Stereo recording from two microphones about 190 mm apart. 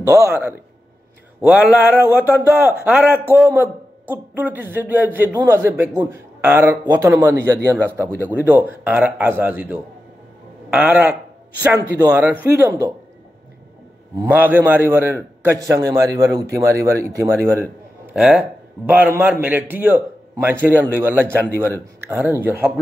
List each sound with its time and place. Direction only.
0.0 s speech: 15° right (ahead or behind)
14.2 s a man's voice: 10° right (ahead or behind)